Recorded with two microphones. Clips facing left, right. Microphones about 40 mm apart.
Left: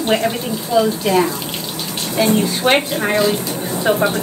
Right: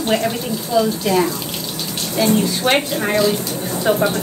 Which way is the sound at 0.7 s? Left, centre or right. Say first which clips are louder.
Left 2 dB; centre.